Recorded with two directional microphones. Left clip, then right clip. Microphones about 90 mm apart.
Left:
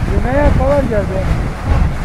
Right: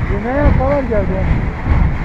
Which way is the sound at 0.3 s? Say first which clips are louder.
Left 2 dB; 20° left (ahead or behind).